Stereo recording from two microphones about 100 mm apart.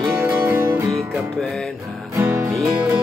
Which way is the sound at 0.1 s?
20° right (ahead or behind).